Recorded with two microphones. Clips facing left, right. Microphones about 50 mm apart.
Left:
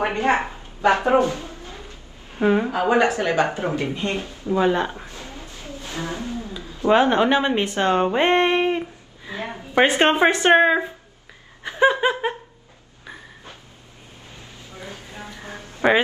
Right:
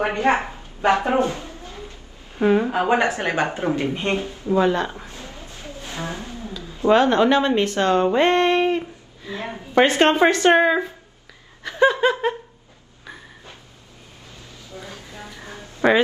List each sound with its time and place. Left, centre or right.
0.1 s a woman's voice: right
0.4 s speech: left
1.2 s a woman's voice: right
2.4 s speech: centre
2.7 s a woman's voice: right
4.6 s speech: centre
5.3 s a sound: right
6.9 s speech: centre
14.7 s a sound: left
15.8 s speech: centre